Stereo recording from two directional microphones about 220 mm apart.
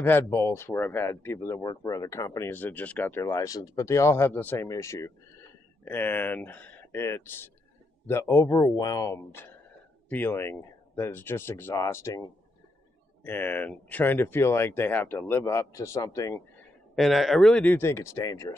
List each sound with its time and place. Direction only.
0.0 s speech: 10° left (ahead or behind)
16.9 s speech: centre (ahead or behind)